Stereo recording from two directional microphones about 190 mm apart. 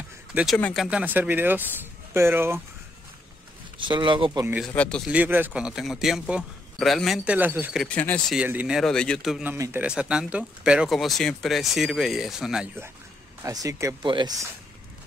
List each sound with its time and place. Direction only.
0.3 s speech: 5° right (ahead or behind)
0.6 s speech: 5° left (ahead or behind)
0.8 s speech: 10° right (ahead or behind)
3.7 s speech: 25° right (ahead or behind)
4.3 s speech: 10° right (ahead or behind)
4.7 s a man's voice: 5° left (ahead or behind)
5.1 s a man's voice: 10° right (ahead or behind)
7.8 s speech: 10° left (ahead or behind)
8.4 s a man's voice: 5° right (ahead or behind)
13.4 s speech: 20° right (ahead or behind)